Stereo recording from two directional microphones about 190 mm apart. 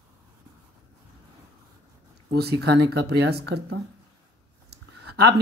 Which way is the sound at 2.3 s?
60° right (ahead or behind).